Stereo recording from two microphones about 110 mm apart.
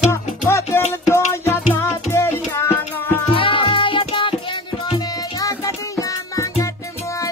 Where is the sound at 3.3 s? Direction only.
55° left (ahead or behind).